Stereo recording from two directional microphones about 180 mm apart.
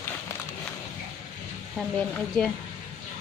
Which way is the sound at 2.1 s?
5° left (ahead or behind).